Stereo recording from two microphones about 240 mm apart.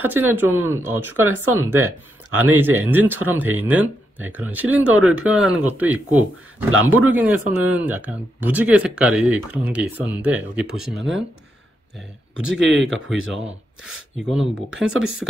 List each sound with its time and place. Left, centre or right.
0.0 s speech: centre
6.7 s speech: right
7.1 s speech: centre
12.4 s speech: centre
14.1 s speech: centre